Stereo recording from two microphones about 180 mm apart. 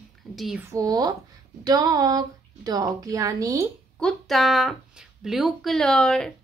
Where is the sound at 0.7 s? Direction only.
20° right (ahead or behind).